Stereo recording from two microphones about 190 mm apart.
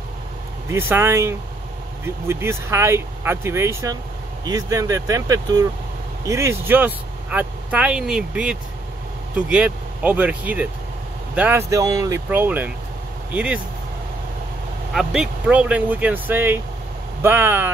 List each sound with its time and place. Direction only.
0.7 s speech: 10° right (ahead or behind)
15.0 s speech: 5° right (ahead or behind)